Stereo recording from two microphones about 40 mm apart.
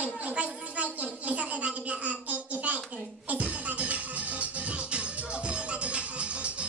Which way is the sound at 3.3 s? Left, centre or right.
Right.